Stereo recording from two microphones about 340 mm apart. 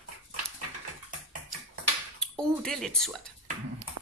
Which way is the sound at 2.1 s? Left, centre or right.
Centre.